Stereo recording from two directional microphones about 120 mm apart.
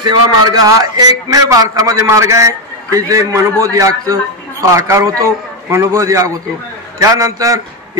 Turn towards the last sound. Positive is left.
turn(degrees=-30)  # may be behind; listen again after turning